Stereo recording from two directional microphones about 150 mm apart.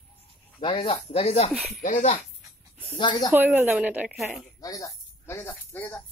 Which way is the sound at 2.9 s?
30° left (ahead or behind).